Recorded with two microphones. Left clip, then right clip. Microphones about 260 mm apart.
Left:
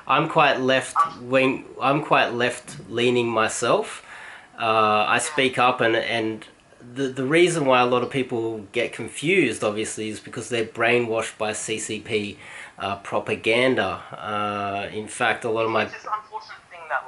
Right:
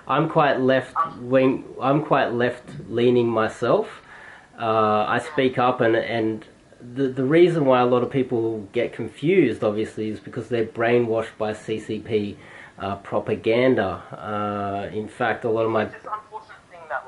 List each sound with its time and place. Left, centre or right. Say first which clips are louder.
0.1 s speech: left 1 dB; centre
8.3 s speech: right 3 dB; right
8.7 s speech: right 1 dB; centre